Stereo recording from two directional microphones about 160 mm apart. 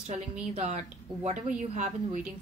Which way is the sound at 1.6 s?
50° right (ahead or behind).